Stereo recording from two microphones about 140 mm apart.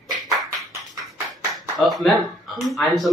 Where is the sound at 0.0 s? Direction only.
Centre (ahead or behind).